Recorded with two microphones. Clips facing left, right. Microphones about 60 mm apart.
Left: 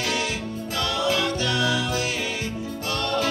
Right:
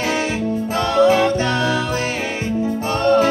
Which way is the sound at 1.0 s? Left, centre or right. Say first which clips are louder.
Right 11 dB; right.